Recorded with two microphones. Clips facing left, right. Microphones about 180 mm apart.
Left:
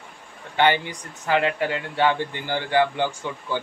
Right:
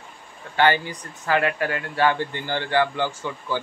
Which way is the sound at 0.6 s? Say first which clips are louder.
Even; 20° left (ahead or behind).